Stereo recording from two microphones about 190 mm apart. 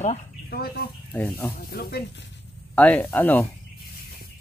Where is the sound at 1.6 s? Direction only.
55° left (ahead or behind).